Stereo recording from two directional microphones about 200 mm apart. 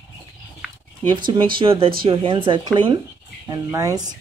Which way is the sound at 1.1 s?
25° right (ahead or behind).